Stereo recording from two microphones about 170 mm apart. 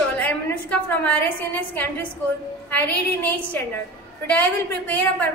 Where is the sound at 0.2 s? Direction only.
10° left (ahead or behind).